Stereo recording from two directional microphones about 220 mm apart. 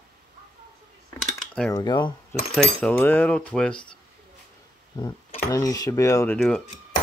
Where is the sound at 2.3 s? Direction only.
5° left (ahead or behind).